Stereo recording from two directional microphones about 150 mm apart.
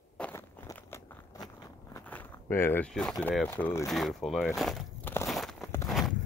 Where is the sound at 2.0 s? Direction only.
10° left (ahead or behind).